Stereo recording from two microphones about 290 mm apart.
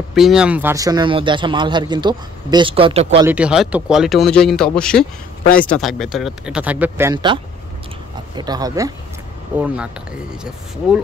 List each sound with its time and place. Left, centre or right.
0.1 s speech: centre; by 3.3 s right
3.3 s speech: centre
8.4 s speech: centre